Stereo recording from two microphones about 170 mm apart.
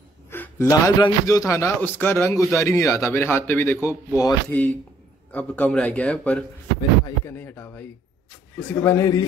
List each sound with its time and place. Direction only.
0.3 s a man's voice: 15° left (ahead or behind)
4.5 s a man's voice: 10° left (ahead or behind)